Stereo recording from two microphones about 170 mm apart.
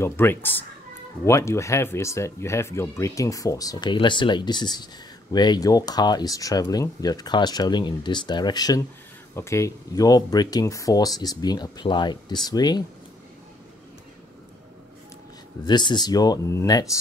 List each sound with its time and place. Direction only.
0.0 s speech: 15° left (ahead or behind)
15.6 s speech: 25° left (ahead or behind)